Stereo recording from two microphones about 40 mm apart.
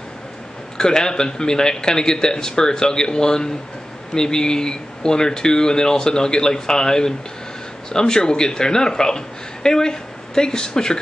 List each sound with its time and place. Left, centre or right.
0.7 s a woman's voice: centre